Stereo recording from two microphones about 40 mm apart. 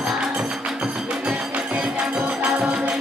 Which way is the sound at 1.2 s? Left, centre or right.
Right.